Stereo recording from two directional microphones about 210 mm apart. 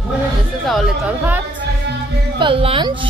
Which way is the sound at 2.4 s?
25° right (ahead or behind).